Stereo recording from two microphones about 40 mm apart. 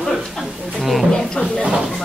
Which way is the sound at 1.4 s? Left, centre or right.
Left.